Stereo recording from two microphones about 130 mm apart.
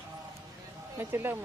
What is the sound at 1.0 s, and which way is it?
Speech, 15° right (ahead or behind).